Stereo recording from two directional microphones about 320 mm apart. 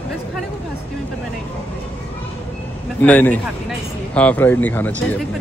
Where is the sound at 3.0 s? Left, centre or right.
Centre.